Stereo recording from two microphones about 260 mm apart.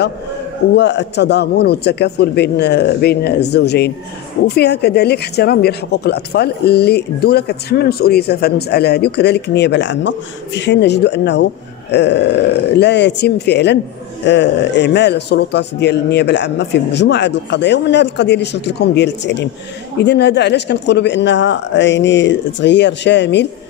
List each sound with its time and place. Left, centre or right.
0.7 s speech: left